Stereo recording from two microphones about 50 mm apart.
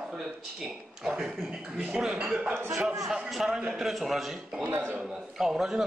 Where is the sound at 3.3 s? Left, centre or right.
Centre.